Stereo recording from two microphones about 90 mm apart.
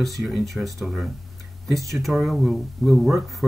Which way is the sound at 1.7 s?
35° right (ahead or behind).